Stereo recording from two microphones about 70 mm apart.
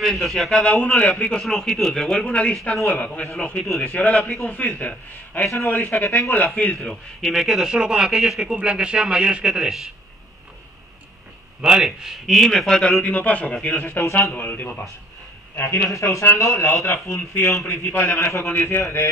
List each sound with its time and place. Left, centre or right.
0.0 s a man's voice: centre; by 4.1 s left
4.1 s speech: centre
4.6 s a man's voice: left
6.9 s a man's voice: centre
11.6 s speech: centre
13.0 s a man's voice: left
14.0 s a man's voice: left
14.3 s a man's voice: left
15.9 s a man's voice: left